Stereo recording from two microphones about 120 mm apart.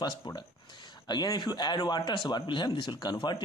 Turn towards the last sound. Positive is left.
turn(degrees=35)  # may be behind; listen again after turning